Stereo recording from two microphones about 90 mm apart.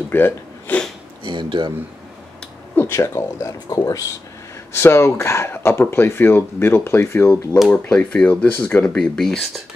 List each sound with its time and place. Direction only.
0.1 s a sound: 20° left (ahead or behind)
1.2 s speech: 60° right (ahead or behind)
2.7 s speech: 25° left (ahead or behind)
3.5 s speech: 45° left (ahead or behind)
4.7 s speech: 30° left (ahead or behind)
7.7 s speech: 15° left (ahead or behind)
8.8 s speech: 5° left (ahead or behind)